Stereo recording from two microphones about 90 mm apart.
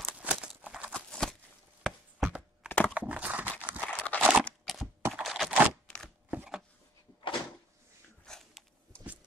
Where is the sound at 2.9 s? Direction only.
15° right (ahead or behind).